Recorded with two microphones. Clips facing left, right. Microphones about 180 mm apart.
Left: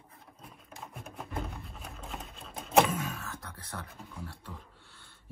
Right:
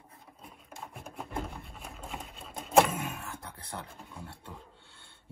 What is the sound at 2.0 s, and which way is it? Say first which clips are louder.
Sewing machine: right 1 dB; centre (ahead or behind).